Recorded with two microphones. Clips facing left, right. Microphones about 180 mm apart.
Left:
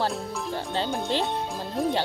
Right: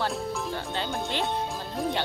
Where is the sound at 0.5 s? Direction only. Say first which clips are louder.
Left 3 dB; 35° left (ahead or behind).